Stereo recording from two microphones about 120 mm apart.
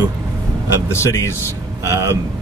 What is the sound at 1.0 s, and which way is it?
Speech, 25° left (ahead or behind).